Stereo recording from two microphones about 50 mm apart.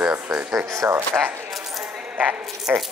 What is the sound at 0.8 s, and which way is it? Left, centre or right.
Speech, right.